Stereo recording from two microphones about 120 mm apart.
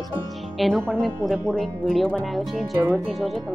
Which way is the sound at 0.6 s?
Centre (ahead or behind).